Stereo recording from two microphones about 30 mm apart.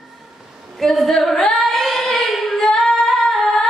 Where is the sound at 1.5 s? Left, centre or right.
Centre.